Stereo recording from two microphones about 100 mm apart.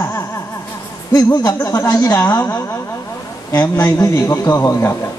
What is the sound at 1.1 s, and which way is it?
Speech, 40° left (ahead or behind).